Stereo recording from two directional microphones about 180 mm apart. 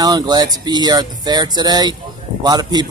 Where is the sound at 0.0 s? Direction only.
20° right (ahead or behind).